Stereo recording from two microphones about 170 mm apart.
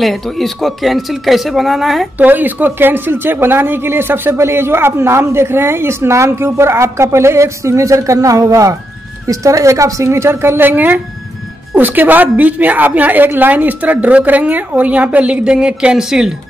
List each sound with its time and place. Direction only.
0.0 s speech: centre (ahead or behind)